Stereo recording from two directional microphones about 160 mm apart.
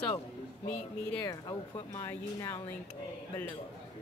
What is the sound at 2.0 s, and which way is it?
Speech, 20° left (ahead or behind).